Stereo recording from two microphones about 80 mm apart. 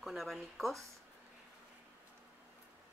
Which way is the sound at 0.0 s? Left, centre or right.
Centre.